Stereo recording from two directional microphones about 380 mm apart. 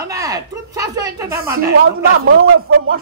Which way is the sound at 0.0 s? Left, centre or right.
Centre.